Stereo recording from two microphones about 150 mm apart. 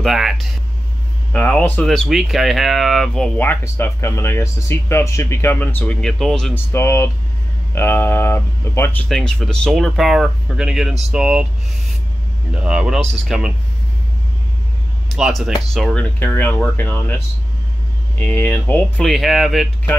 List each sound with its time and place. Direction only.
0.0 s speech: centre (ahead or behind)
1.3 s speech: 10° left (ahead or behind)
3.3 s speech: 15° left (ahead or behind)
6.5 s speech: 15° left (ahead or behind)
9.1 s speech: 5° left (ahead or behind)
12.4 s speech: 5° right (ahead or behind)
15.1 s speech: 5° right (ahead or behind); by 19.0 s 15° left (ahead or behind)
19.0 s speech: centre (ahead or behind)